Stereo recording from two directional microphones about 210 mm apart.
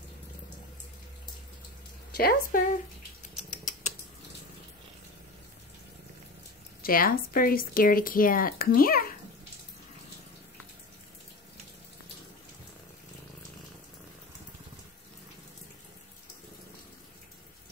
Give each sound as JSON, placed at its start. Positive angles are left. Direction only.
{"t": 2.1, "sound": "speech", "side_deg": 45}
{"t": 3.2, "sound": "a sound", "side_deg": 35}
{"t": 6.8, "sound": "speech", "side_deg": 45}